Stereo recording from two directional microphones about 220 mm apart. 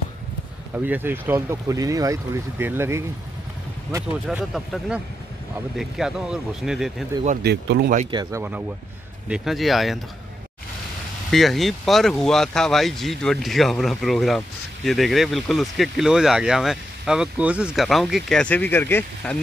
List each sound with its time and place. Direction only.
0.7 s speech: 10° right (ahead or behind)
7.4 s speech: 50° right (ahead or behind)
8.1 s speech: 15° right (ahead or behind); by 9.9 s centre (ahead or behind)
11.2 s speech: centre (ahead or behind)